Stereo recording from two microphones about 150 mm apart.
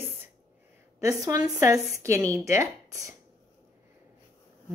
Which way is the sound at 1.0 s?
25° right (ahead or behind).